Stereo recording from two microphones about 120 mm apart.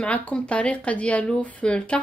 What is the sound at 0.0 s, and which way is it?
Speech, 10° left (ahead or behind).